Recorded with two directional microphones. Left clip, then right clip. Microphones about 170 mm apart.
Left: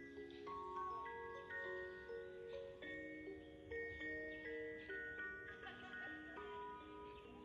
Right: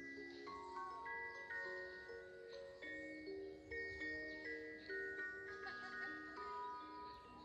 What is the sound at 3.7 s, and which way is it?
Glockenspiel, 35° left (ahead or behind).